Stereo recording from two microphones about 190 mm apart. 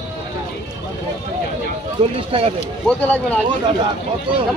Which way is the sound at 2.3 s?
30° right (ahead or behind).